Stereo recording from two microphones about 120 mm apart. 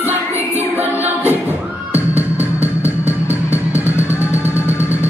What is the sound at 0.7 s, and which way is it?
Music, 15° right (ahead or behind).